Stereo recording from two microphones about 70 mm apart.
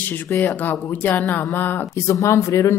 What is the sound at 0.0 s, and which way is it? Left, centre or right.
Speech, left.